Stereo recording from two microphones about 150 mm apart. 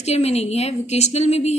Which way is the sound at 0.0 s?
45° left (ahead or behind).